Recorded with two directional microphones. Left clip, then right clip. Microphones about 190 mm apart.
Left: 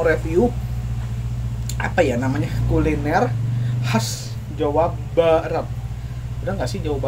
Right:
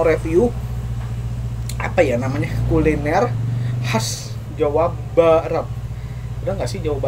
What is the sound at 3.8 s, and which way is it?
A man's voice, 5° right (ahead or behind).